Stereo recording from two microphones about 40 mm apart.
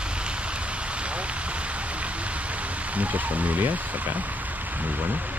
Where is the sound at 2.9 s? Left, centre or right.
Right.